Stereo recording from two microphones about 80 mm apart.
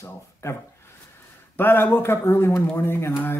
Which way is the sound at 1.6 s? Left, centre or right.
Left.